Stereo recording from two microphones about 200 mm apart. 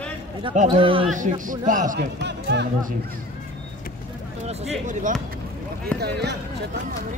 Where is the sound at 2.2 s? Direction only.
60° right (ahead or behind).